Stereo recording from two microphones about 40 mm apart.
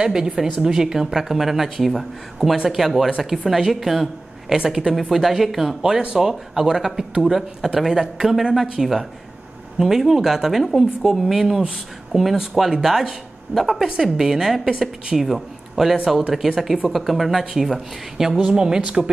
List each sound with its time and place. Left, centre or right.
0.0 s speech: centre
4.6 s speech: centre
5.1 s a man's voice: centre
18.4 s a woman's voice: centre